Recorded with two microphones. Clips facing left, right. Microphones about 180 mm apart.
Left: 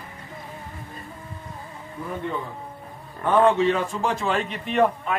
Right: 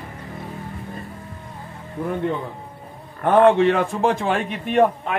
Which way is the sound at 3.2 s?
60° right (ahead or behind).